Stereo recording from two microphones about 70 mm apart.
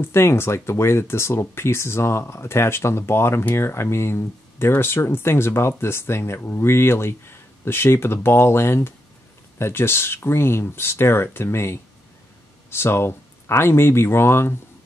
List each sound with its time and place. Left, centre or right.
0.0 s speech: left